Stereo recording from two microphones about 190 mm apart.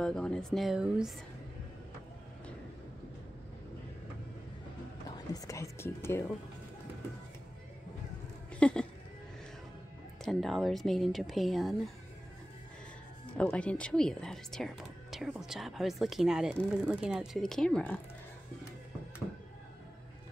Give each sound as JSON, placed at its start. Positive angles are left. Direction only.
{"t": 0.0, "sound": "speech", "side_deg": 5}
{"t": 5.1, "sound": "speech", "side_deg": 20}
{"t": 8.5, "sound": "a sound", "side_deg": 5}
{"t": 10.2, "sound": "speech", "side_deg": 0}
{"t": 13.4, "sound": "speech", "side_deg": 5}